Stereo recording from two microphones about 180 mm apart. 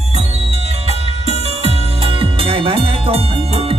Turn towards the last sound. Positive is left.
turn(degrees=-30)  # may be behind; listen again after turning